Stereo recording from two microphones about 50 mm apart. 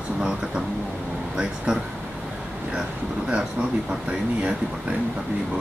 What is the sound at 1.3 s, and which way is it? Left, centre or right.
Speech, centre.